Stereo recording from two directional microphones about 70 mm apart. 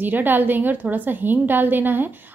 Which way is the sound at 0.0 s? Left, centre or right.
Right.